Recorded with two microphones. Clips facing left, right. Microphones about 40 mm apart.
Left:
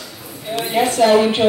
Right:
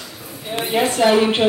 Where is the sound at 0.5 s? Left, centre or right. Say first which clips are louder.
Left 1 dB; centre.